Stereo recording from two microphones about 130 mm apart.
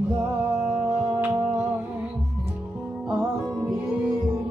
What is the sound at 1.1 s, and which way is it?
Music, 15° right (ahead or behind).